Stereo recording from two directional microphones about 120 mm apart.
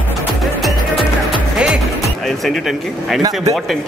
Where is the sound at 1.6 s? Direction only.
5° right (ahead or behind).